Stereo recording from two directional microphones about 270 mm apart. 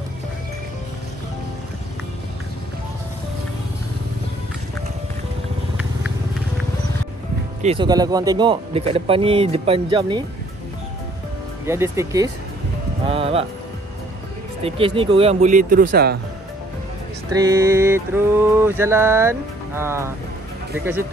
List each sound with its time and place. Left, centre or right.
7.6 s speech: centre
11.6 s mantra: centre
13.0 s speech: right
14.6 s speech: right
17.3 s mantra: centre